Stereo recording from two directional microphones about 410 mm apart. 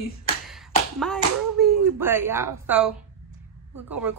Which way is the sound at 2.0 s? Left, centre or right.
Centre.